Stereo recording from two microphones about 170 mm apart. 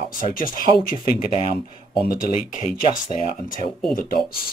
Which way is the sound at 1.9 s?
55° left (ahead or behind).